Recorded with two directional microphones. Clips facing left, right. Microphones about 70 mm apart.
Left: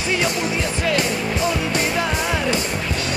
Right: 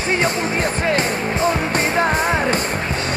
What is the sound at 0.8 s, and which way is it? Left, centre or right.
Music, right.